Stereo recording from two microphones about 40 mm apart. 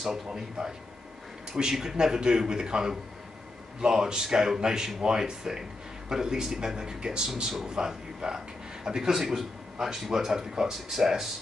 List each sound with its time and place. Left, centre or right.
0.3 s speech: centre